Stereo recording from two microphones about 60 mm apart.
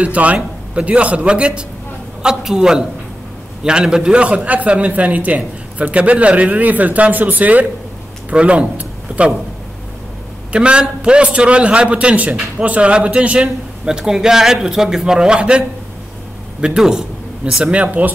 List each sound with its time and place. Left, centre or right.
0.0 s a man's voice: right
10.5 s a man's voice: centre
16.6 s a man's voice: centre
17.6 s a man's voice: right